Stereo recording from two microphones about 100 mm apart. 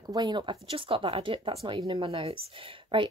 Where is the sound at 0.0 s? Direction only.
45° right (ahead or behind).